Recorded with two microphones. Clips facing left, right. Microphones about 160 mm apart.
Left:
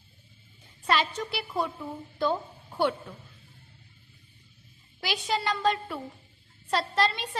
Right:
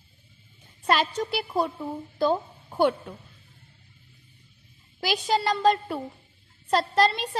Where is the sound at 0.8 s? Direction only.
45° right (ahead or behind).